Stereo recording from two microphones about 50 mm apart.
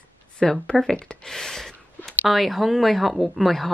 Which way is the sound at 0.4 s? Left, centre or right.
Centre.